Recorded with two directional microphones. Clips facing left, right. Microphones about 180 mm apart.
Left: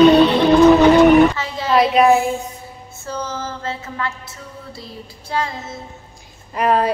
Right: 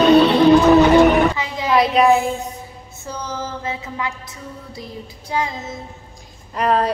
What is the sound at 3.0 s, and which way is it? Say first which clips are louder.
A woman's voice: left 1 dB; 15° right (ahead or behind).